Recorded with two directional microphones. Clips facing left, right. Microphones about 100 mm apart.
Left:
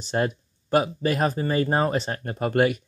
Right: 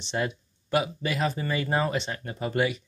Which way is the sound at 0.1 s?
45° left (ahead or behind).